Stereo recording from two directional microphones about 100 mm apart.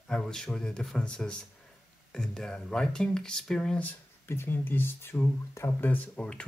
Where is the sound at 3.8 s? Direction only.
25° left (ahead or behind).